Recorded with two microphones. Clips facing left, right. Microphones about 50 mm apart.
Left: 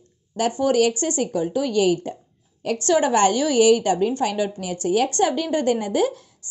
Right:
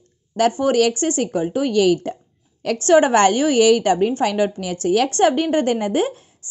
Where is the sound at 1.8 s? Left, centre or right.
Right.